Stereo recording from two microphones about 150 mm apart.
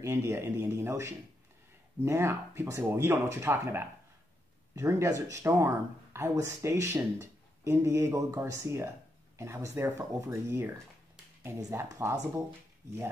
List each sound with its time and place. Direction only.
0.0 s speech: 20° right (ahead or behind)